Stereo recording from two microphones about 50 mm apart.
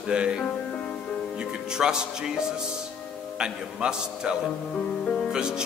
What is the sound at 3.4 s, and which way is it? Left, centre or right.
Speech, centre.